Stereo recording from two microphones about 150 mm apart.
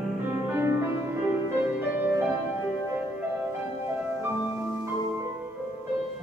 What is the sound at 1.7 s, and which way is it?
Music, 15° right (ahead or behind).